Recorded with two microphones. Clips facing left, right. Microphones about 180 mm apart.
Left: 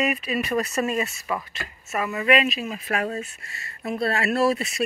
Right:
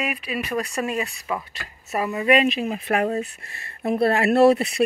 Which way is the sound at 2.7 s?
55° right (ahead or behind).